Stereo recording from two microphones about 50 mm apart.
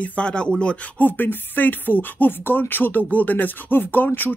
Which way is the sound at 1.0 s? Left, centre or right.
Left.